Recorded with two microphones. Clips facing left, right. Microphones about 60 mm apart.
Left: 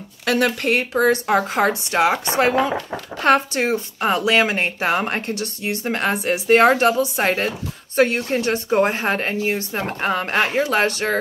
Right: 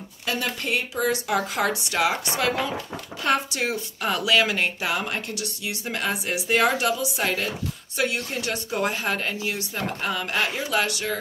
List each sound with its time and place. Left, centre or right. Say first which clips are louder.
0.2 s speech: left 9 dB; left
2.9 s speech: left 7 dB; left